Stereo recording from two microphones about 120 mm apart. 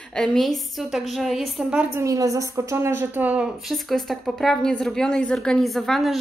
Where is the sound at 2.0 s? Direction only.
25° right (ahead or behind).